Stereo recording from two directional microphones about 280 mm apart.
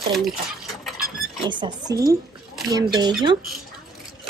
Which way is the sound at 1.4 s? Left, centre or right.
Centre.